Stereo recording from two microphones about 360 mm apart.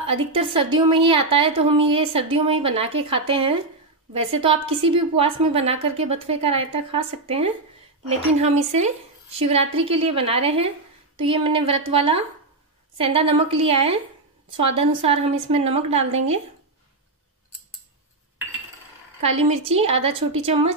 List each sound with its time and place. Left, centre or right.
0.0 s a woman's voice: centre
19.2 s a woman's voice: centre